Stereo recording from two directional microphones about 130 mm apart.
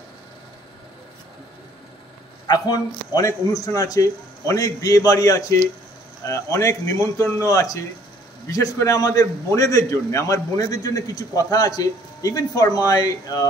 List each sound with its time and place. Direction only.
2.4 s a man's voice: 30° left (ahead or behind)